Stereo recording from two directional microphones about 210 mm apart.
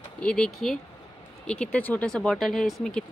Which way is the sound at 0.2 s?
5° left (ahead or behind).